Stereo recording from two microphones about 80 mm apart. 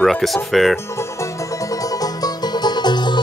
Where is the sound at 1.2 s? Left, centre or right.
Left.